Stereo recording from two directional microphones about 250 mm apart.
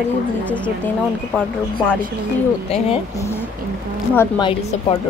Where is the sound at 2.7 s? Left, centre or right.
Left.